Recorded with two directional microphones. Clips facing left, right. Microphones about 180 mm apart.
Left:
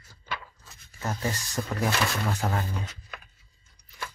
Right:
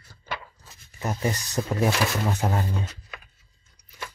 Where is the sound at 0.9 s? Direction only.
20° right (ahead or behind).